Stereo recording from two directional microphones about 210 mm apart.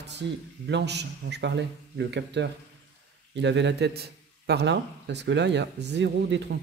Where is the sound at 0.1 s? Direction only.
55° right (ahead or behind).